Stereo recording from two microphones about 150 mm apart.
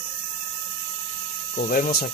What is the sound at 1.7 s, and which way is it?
Speech, 75° left (ahead or behind).